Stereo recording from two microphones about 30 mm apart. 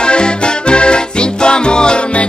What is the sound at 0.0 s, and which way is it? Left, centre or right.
Music, left.